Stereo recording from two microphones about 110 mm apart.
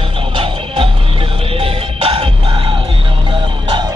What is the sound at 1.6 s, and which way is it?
Music, 60° right (ahead or behind).